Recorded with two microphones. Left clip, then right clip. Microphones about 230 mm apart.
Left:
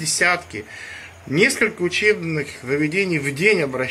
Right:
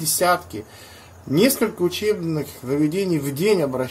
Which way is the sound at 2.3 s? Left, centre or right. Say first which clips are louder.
Left 2 dB; centre.